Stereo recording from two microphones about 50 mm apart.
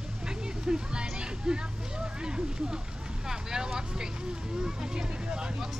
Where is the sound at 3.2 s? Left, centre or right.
Centre.